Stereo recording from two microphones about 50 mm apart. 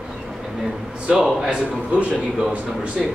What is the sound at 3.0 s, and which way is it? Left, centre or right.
Speech, centre.